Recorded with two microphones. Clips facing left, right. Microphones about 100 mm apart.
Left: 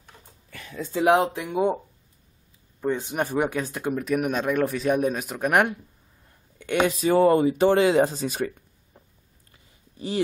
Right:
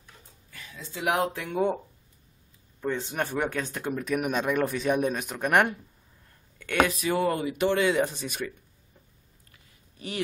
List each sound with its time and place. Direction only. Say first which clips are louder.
0.5 s a sound: left 10 dB; 65° left (ahead or behind)
0.9 s speech: left 7 dB; 30° left (ahead or behind)
2.8 s speech: left 4 dB; 15° left (ahead or behind)
6.6 s speech: left 2 dB; 20° left (ahead or behind)
7.0 s speech: left 8 dB; 30° left (ahead or behind)
9.5 s a sound: left 3 dB; 25° left (ahead or behind)